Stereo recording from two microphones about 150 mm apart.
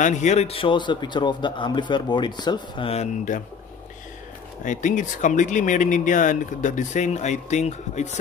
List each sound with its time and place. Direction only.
0.0 s a man's voice: 55° left (ahead or behind); by 2.9 s 30° left (ahead or behind)
2.9 s speech: 45° left (ahead or behind)
4.6 s speech: 55° left (ahead or behind)